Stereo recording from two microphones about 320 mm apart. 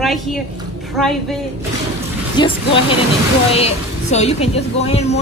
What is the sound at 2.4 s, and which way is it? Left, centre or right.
Speech, centre.